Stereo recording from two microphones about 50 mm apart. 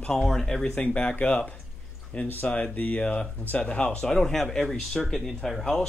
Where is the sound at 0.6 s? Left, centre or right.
Left.